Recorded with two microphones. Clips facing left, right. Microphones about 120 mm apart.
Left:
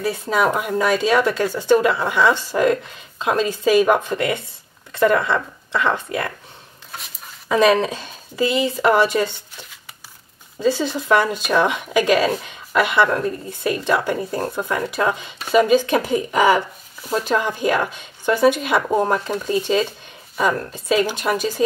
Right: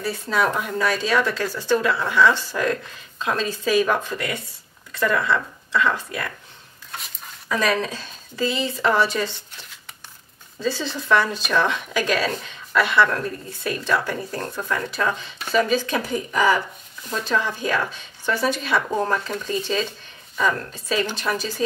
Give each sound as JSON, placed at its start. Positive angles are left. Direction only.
{"t": 0.0, "sound": "a woman's voice", "side_deg": 15}
{"t": 7.4, "sound": "a woman's voice", "side_deg": 20}
{"t": 10.6, "sound": "a woman's voice", "side_deg": 15}